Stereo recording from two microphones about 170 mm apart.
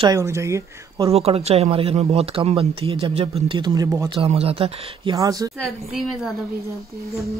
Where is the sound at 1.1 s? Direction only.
35° right (ahead or behind); by 4.1 s 20° right (ahead or behind).